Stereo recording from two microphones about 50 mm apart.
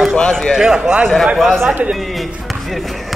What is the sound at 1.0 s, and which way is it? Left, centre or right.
Speech, centre.